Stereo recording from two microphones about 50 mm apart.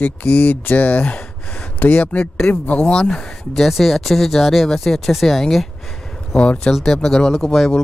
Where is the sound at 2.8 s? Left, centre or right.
Centre.